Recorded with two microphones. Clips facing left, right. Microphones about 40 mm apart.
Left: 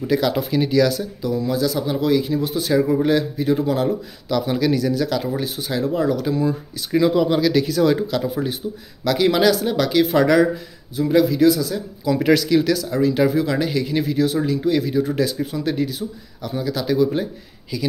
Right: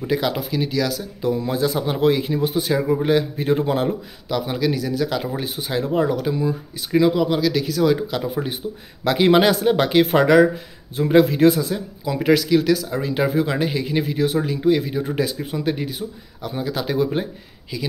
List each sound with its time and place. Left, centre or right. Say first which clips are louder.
0.0 s speech: left 2 dB; centre
0.4 s speech: left 5 dB; centre
1.2 s speech: right 1 dB; right
2.6 s speech: left 2 dB; centre
3.3 s a man's voice: even; right
4.3 s speech: left 2 dB; centre
8.1 s speech: left 2 dB; centre
11.0 s a man's voice: right 1 dB; right
12.2 s speech: even; centre
13.0 s speech: left 3 dB; centre